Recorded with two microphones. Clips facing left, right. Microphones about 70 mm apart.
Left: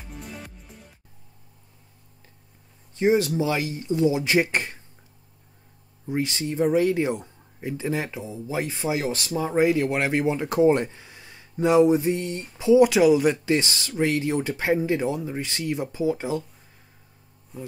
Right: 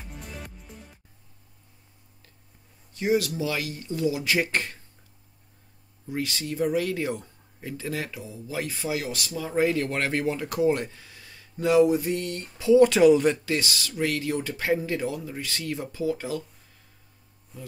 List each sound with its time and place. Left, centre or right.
0.1 s music: centre
2.9 s speech: left
6.0 s speech: left; by 13.4 s centre
13.5 s speech: left